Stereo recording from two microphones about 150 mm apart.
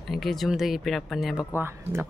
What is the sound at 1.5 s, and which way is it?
Speech, 15° right (ahead or behind).